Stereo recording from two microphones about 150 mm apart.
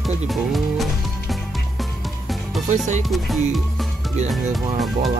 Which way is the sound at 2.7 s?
50° right (ahead or behind).